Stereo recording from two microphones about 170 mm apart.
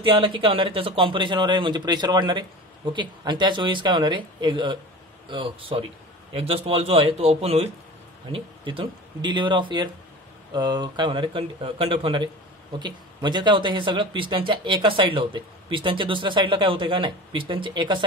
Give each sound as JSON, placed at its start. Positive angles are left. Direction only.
{"t": 0.0, "sound": "a man's voice", "side_deg": -30}